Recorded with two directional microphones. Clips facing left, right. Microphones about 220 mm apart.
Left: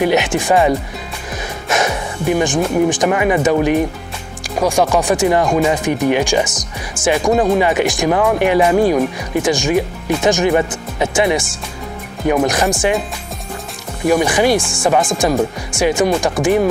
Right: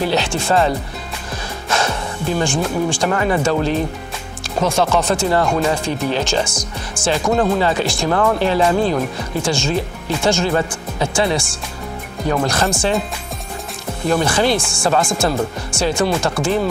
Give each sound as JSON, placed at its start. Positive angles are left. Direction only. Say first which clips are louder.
{"t": 0.0, "sound": "speech", "louder": "left 4 dB", "side_deg": 20}
{"t": 14.0, "sound": "speech", "louder": "left 3 dB", "side_deg": 15}